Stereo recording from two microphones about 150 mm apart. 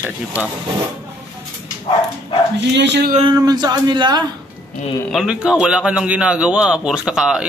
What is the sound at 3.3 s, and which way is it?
Speech, 25° right (ahead or behind).